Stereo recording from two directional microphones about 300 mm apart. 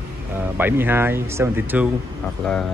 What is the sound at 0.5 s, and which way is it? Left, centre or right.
Speech, centre.